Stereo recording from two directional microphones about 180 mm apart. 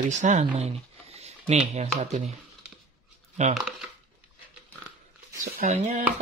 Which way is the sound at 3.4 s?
40° right (ahead or behind).